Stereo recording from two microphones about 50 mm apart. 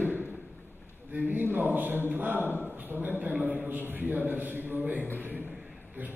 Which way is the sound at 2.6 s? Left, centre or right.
Right.